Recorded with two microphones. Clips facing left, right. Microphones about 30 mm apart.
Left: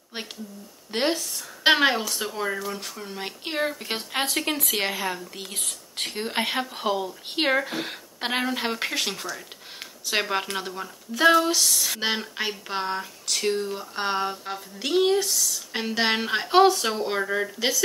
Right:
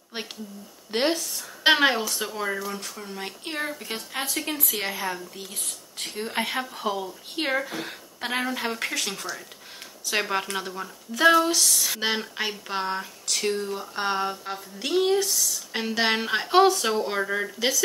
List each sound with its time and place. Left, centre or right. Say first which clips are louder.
0.9 s speech: right 1 dB; centre; by 3.7 s left
4.1 s speech: left 4 dB; left
5.3 s speech: left 2 dB; left
6.2 s speech: left 1 dB; left
7.6 s speech: left 2 dB; left
8.3 s speech: left 1 dB; left
10.3 s speech: even; centre